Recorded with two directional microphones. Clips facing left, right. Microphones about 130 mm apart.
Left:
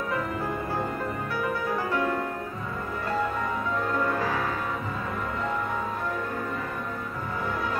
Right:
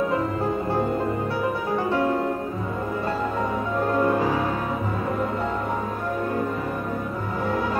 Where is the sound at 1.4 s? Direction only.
25° right (ahead or behind).